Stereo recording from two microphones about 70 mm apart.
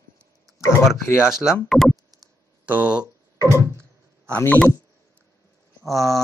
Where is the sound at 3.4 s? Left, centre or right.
Right.